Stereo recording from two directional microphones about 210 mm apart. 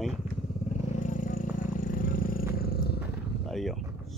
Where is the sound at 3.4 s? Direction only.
Centre (ahead or behind).